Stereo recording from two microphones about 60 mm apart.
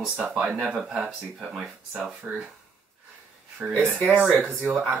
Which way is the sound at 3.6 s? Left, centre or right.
Right.